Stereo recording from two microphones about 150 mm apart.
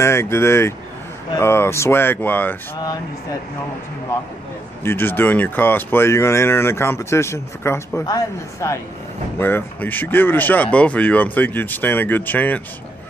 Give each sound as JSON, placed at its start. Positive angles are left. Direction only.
{"t": 0.0, "sound": "speech", "side_deg": 15}
{"t": 4.8, "sound": "speech", "side_deg": 15}